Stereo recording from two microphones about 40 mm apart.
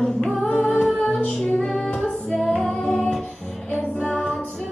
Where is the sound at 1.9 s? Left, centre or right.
Centre.